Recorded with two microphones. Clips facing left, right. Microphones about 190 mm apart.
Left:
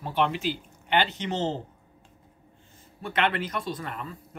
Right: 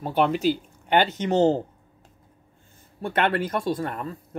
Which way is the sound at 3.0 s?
50° right (ahead or behind).